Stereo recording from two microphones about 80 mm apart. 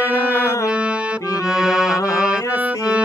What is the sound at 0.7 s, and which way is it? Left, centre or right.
Music, centre.